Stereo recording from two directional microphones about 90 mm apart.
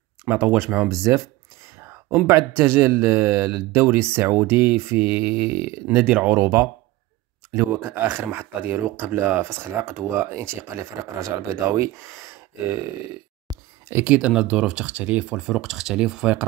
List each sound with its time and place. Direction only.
0.2 s speech: 30° right (ahead or behind)
0.5 s speech: 20° right (ahead or behind)
0.9 s speech: 35° right (ahead or behind)
1.8 s a sound: 30° right (ahead or behind)
2.2 s speech: 30° right (ahead or behind)
6.3 s speech: 35° right (ahead or behind)
13.5 s a sound: 45° right (ahead or behind)
14.0 s speech: 15° right (ahead or behind)
15.5 s speech: centre (ahead or behind)